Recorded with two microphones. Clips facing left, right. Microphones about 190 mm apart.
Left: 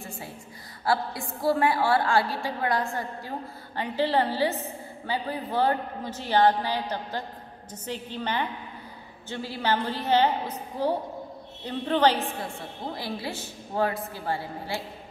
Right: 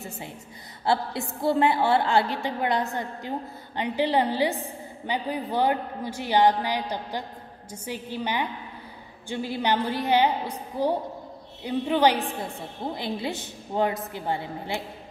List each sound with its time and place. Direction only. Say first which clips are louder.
0.8 s a woman's voice: right 1 dB; 25° right (ahead or behind)